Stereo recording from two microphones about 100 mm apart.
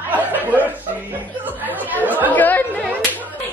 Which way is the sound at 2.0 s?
15° right (ahead or behind).